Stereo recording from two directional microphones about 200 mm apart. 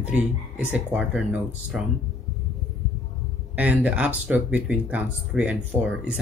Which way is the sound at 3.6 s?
5° right (ahead or behind).